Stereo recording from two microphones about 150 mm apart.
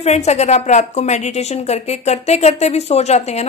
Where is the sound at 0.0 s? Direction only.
45° left (ahead or behind).